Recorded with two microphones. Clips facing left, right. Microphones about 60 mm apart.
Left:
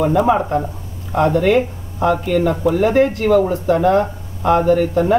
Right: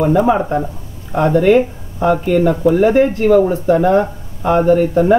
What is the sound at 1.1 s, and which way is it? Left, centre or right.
Speech, centre.